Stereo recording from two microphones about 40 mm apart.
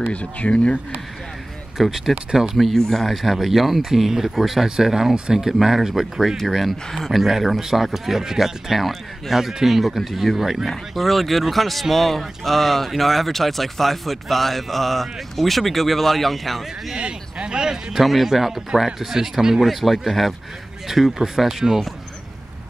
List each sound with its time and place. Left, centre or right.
0.1 s speech: left
1.8 s speech: centre
2.5 s speech: centre
17.0 s speech: right
17.9 s speech: centre
19.6 s speech: centre